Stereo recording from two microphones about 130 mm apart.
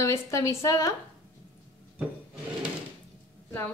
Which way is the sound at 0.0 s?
20° left (ahead or behind).